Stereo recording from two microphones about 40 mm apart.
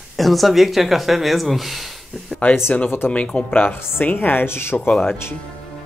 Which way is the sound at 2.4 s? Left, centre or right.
Left.